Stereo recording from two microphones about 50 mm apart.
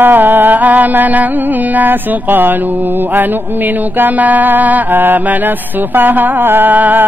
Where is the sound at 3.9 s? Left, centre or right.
Right.